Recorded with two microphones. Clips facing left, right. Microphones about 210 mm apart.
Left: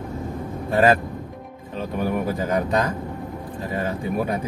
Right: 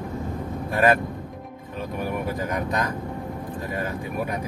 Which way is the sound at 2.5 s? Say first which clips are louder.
Left 6 dB; 30° left (ahead or behind).